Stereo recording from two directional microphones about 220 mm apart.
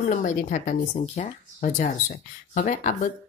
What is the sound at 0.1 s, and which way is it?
Speech, 35° left (ahead or behind).